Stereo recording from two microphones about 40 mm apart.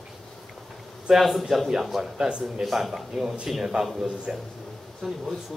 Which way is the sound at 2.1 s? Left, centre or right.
Right.